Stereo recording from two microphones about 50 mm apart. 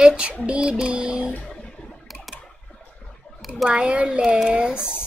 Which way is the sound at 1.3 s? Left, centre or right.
Left.